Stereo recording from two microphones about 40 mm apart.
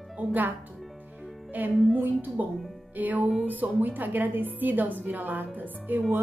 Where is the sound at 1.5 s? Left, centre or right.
Right.